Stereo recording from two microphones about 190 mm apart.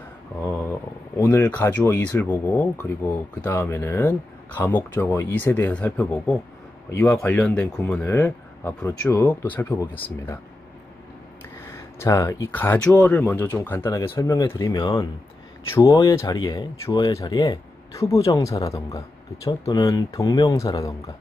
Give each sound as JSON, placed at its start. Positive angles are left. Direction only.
{"t": 1.1, "sound": "speech", "side_deg": 15}
{"t": 11.6, "sound": "a sound", "side_deg": 15}
{"t": 12.4, "sound": "speech", "side_deg": 10}